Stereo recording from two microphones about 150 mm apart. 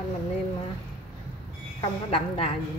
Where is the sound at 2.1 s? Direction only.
45° left (ahead or behind).